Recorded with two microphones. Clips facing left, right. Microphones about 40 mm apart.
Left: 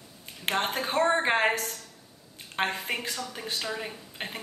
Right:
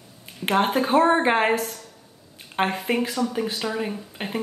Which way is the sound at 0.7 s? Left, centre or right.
Centre.